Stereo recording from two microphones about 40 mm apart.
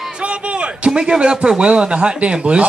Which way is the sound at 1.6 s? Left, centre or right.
Right.